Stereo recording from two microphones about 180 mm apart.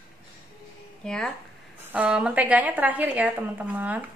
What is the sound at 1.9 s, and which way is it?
A woman's voice, 5° right (ahead or behind).